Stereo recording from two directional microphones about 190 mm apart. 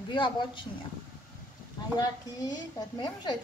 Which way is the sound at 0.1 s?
25° left (ahead or behind).